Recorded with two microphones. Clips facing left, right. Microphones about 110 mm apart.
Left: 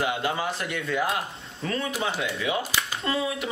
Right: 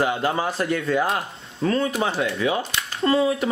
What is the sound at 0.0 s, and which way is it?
A man's voice, 35° right (ahead or behind).